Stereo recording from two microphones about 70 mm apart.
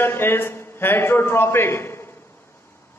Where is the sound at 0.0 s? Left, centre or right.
Left.